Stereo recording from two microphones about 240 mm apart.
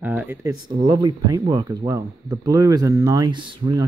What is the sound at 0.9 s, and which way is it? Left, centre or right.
Speech, centre.